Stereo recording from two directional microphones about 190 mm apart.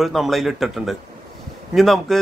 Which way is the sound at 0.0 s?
Centre (ahead or behind).